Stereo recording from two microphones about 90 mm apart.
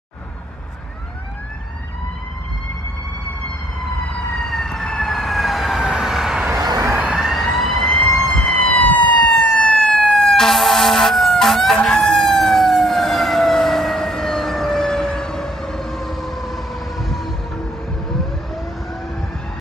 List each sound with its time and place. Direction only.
4.0 s emergency vehicle: 15° left (ahead or behind)
4.3 s emergency vehicle: centre (ahead or behind)
6.6 s a sound: 45° right (ahead or behind)
7.0 s emergency vehicle: 10° right (ahead or behind)